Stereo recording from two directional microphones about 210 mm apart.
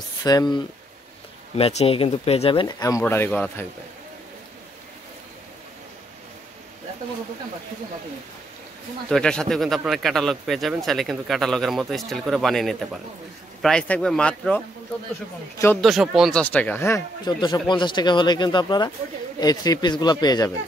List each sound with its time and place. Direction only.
0.2 s speech: 15° left (ahead or behind)
1.6 s speech: 30° left (ahead or behind); by 3.6 s 5° left (ahead or behind)
9.1 s speech: 5° left (ahead or behind)
15.8 s speech: centre (ahead or behind); by 20.5 s 20° left (ahead or behind)